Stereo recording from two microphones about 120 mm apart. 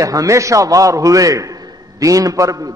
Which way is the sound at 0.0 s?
30° right (ahead or behind).